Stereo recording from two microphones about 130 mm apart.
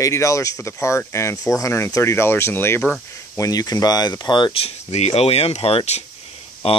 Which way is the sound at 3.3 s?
30° left (ahead or behind).